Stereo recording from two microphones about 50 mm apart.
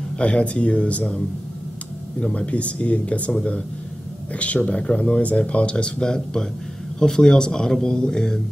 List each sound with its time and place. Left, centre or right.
0.2 s a man's voice: left